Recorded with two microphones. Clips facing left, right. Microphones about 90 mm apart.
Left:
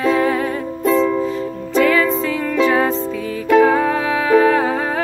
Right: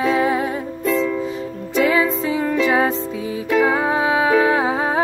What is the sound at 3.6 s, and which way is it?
Music, 20° right (ahead or behind).